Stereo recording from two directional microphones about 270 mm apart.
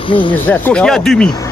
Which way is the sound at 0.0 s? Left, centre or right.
Centre.